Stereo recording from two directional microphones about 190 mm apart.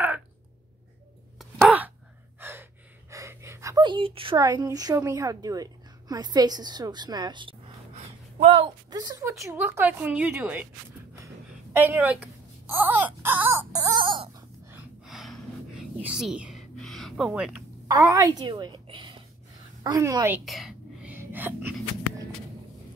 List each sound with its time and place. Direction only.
1.4 s wail: 5° right (ahead or behind)
2.4 s gasp: 10° right (ahead or behind)
3.1 s a woman's voice: 15° right (ahead or behind)
11.7 s wail: 10° right (ahead or behind)
14.7 s a sound: 5° right (ahead or behind)
17.8 s a woman's voice: 15° right (ahead or behind)
20.4 s whispering: centre (ahead or behind)